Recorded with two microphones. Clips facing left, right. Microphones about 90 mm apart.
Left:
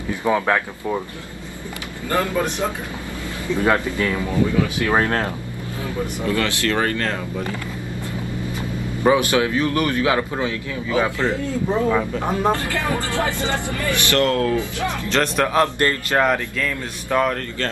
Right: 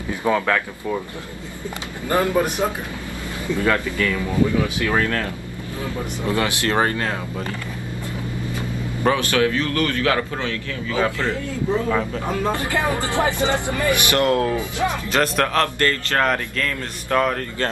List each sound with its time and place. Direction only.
0.3 s speech: 15° left (ahead or behind)
2.0 s speech: 20° right (ahead or behind)
3.5 s a man's voice: 20° left (ahead or behind)
6.2 s speech: 20° right (ahead or behind)
7.0 s speech: 5° right (ahead or behind)
9.0 s a man's voice: 20° left (ahead or behind)
11.9 s speech: 5° left (ahead or behind)
12.5 s speech: 20° right (ahead or behind)
15.0 s speech: 5° right (ahead or behind)
15.4 s speech: 15° left (ahead or behind)
16.3 s speech: 5° left (ahead or behind)